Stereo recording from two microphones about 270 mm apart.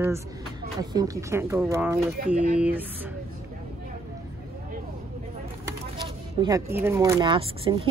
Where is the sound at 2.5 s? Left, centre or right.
Centre.